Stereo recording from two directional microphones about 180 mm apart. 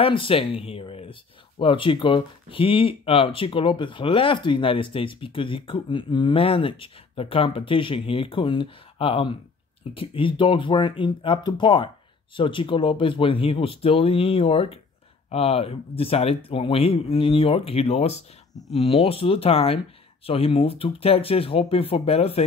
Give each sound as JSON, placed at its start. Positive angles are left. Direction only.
{"t": 0.0, "sound": "speech", "side_deg": 30}